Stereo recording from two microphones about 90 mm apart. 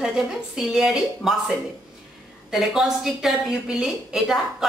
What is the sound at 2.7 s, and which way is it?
A woman's voice, 5° right (ahead or behind).